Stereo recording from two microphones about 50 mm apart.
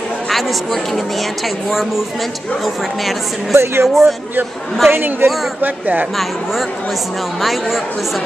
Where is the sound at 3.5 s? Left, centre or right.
Right.